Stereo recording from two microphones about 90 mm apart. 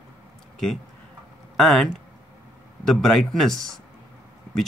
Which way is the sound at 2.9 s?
5° left (ahead or behind).